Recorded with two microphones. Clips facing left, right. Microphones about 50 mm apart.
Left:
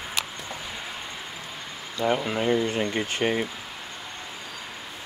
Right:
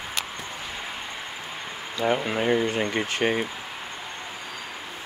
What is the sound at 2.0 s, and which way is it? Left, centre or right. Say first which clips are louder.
Speech: right 1 dB; centre.